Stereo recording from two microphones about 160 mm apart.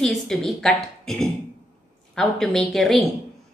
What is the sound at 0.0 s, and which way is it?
A woman's voice, centre (ahead or behind).